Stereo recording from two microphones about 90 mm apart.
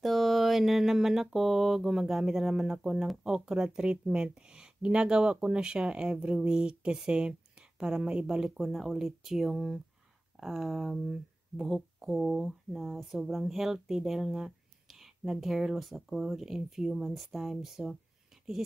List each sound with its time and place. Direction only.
0.0 s mantra: centre (ahead or behind)
10.4 s speech: 5° right (ahead or behind)